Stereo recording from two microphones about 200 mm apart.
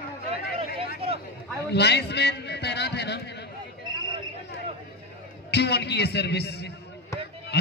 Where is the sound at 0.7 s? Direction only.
30° right (ahead or behind).